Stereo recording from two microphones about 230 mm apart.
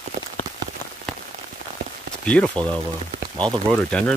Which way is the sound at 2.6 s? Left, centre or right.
Centre.